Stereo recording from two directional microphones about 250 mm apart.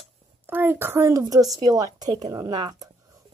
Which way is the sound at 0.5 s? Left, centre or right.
Centre.